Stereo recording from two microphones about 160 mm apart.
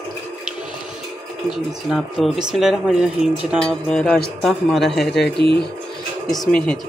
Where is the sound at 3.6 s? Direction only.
5° left (ahead or behind).